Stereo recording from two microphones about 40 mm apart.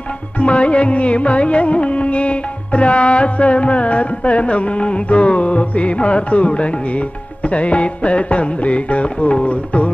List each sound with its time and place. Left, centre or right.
0.4 s music: left